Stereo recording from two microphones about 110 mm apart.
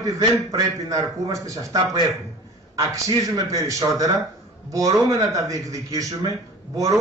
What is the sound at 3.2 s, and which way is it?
A man's voice, 30° right (ahead or behind).